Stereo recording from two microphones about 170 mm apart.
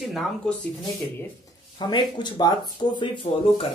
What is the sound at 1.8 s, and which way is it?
Speech, 25° left (ahead or behind).